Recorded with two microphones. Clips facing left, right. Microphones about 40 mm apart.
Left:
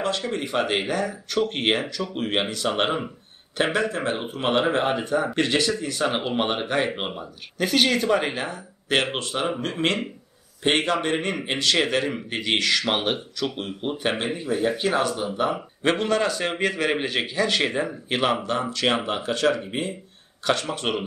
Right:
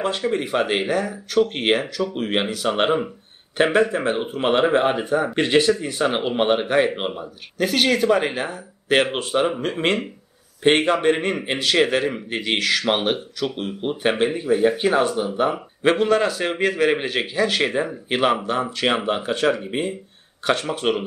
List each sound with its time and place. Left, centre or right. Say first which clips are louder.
0.0 s speech: right 4 dB; centre